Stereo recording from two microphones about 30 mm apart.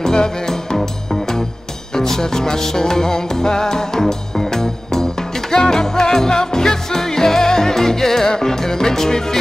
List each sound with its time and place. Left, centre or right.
0.0 s music: centre
2.0 s music: centre